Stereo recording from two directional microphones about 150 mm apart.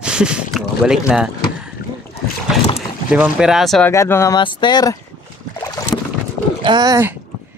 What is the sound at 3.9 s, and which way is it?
Speech, 20° left (ahead or behind).